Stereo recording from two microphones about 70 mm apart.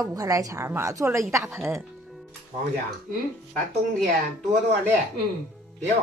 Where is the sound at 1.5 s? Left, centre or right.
Right.